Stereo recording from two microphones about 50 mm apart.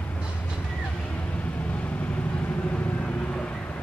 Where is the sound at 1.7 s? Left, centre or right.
Left.